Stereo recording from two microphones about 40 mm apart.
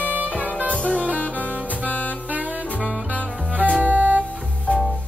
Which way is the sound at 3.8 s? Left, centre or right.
Right.